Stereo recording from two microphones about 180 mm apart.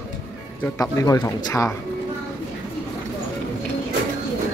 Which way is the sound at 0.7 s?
20° left (ahead or behind).